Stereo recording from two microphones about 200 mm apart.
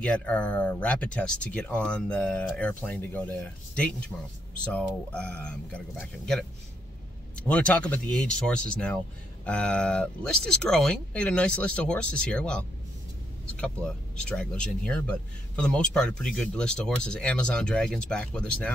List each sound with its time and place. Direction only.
0.0 s speech: 5° left (ahead or behind)
7.4 s speech: 5° left (ahead or behind)